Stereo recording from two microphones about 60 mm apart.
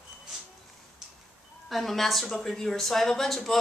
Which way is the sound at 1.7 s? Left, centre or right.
Centre.